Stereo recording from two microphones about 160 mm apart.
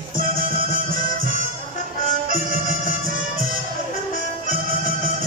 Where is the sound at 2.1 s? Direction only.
60° right (ahead or behind).